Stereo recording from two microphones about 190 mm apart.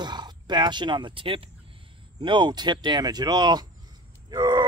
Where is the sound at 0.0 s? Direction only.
20° right (ahead or behind).